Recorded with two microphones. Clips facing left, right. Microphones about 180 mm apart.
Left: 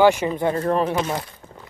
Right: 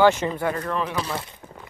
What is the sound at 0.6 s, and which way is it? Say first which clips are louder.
Speech: left 6 dB; 40° left (ahead or behind).